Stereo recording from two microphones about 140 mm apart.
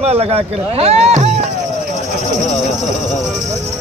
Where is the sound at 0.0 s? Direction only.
45° right (ahead or behind).